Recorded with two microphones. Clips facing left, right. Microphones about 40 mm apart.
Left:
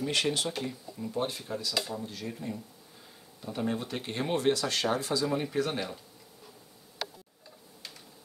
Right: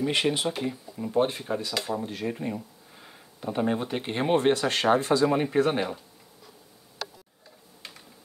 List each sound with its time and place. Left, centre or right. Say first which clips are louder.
0.0 s speech: right 4 dB; right
1.1 s speech: right 8 dB; right